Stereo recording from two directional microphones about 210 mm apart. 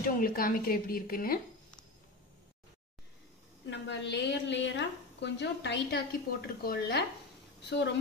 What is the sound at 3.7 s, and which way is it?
A woman's voice, 55° left (ahead or behind).